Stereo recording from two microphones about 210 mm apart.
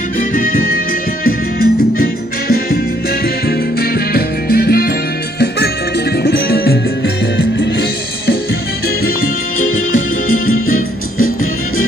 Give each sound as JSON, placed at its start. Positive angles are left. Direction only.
{"t": 0.2, "sound": "music", "side_deg": 40}
{"t": 6.2, "sound": "music", "side_deg": 50}
{"t": 8.8, "sound": "music", "side_deg": 45}
{"t": 9.7, "sound": "music", "side_deg": 70}
{"t": 10.2, "sound": "music", "side_deg": 40}